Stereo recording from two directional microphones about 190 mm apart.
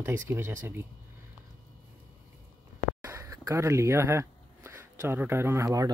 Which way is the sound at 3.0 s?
15° right (ahead or behind).